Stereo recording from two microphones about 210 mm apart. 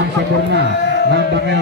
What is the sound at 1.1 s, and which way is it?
Speech, 55° right (ahead or behind).